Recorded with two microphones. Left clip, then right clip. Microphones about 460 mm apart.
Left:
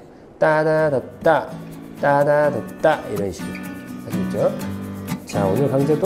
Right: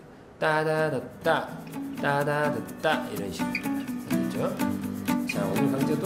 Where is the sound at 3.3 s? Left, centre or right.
Centre.